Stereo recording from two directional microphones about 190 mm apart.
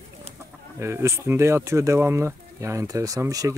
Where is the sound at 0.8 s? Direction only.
15° right (ahead or behind).